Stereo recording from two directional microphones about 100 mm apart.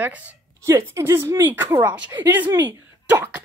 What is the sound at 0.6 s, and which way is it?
A woman's voice, 30° right (ahead or behind).